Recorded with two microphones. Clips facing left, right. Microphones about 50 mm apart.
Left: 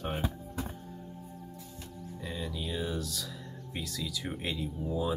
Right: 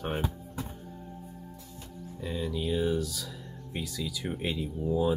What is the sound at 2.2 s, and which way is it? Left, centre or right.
Speech, centre.